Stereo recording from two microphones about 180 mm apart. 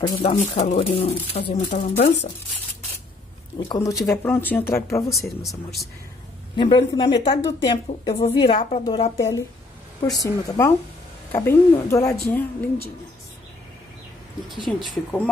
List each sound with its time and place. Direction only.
0.2 s speech: 40° left (ahead or behind)
3.5 s a woman's voice: 25° left (ahead or behind)
5.4 s speech: centre (ahead or behind)
6.5 s speech: 25° left (ahead or behind)
9.1 s a woman's voice: 15° left (ahead or behind)
14.7 s a woman's voice: 10° left (ahead or behind)